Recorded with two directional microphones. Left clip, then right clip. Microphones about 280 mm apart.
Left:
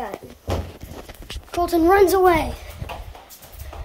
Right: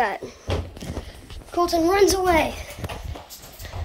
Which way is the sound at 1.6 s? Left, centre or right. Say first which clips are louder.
Left 3 dB; centre.